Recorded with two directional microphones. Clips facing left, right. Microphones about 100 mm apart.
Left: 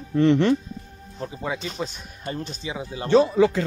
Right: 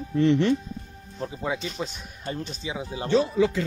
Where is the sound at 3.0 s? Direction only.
60° left (ahead or behind).